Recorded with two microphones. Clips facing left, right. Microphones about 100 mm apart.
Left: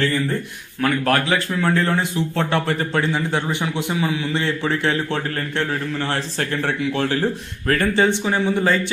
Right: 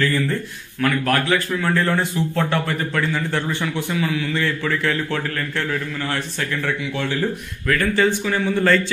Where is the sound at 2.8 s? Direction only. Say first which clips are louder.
Left 2 dB; 30° left (ahead or behind).